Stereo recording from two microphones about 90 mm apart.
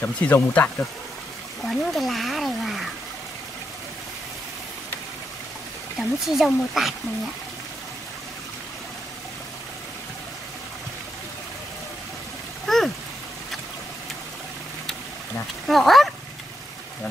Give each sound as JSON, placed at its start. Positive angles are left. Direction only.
{"t": 0.0, "sound": "speech", "side_deg": 15}
{"t": 1.6, "sound": "speech", "side_deg": 0}
{"t": 5.9, "sound": "speech", "side_deg": 0}
{"t": 12.6, "sound": "a sound", "side_deg": 0}
{"t": 15.6, "sound": "speech", "side_deg": 0}